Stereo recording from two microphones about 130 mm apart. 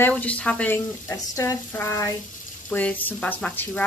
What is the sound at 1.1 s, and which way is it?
Speech, 25° left (ahead or behind).